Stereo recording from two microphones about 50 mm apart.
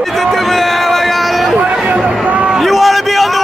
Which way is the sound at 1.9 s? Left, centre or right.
Right.